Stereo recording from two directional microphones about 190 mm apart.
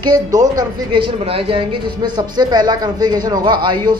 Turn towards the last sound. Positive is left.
turn(degrees=-20)  # may be behind; listen again after turning